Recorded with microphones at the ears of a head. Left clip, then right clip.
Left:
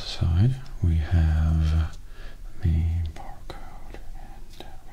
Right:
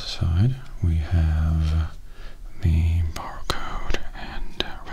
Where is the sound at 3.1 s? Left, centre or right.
Right.